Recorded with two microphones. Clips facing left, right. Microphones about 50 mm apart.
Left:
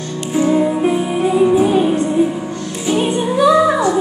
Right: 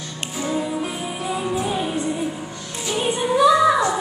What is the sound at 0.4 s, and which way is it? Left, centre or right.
Music, left.